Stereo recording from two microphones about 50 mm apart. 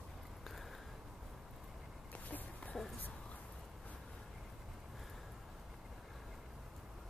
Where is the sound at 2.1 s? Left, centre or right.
Left.